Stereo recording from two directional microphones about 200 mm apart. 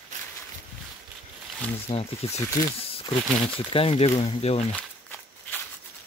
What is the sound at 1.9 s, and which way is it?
Speech, 30° left (ahead or behind).